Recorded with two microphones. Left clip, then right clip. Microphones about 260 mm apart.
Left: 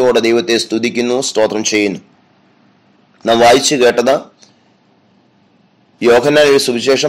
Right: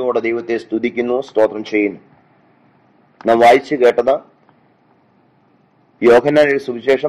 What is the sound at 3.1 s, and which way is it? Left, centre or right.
Speech, left.